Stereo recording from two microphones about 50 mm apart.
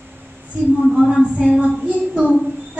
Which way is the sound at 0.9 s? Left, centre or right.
Centre.